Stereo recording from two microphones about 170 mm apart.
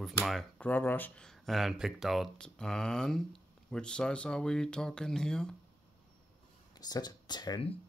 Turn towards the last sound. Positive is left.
turn(degrees=30)  # may be behind; listen again after turning